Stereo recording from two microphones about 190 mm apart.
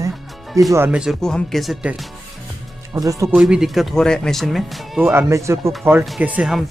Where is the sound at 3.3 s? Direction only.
Centre (ahead or behind).